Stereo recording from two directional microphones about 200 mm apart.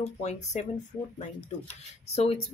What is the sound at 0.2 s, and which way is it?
Speech, 35° left (ahead or behind).